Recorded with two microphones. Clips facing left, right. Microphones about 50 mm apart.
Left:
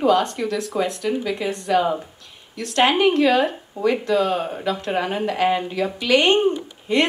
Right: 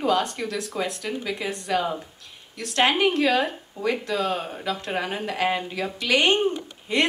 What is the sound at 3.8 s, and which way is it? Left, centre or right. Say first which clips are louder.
A woman's voice: left 6 dB; left.